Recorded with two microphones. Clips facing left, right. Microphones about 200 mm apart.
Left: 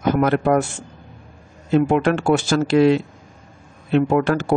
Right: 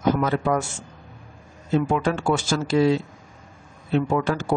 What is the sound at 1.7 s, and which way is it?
Speech, 60° left (ahead or behind).